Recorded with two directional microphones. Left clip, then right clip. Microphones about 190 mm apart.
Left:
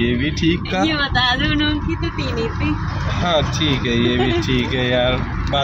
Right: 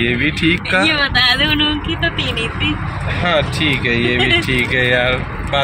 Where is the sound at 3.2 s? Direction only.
15° right (ahead or behind).